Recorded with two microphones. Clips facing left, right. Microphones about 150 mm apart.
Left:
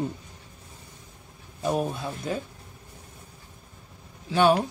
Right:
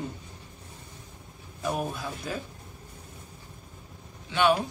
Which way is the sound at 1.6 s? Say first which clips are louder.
Left 4 dB; 30° left (ahead or behind).